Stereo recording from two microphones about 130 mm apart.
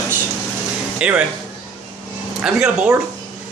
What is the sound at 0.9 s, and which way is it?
Speech, 10° right (ahead or behind).